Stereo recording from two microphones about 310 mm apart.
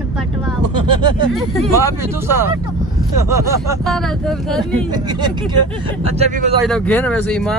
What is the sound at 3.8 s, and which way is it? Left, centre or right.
Speech, centre.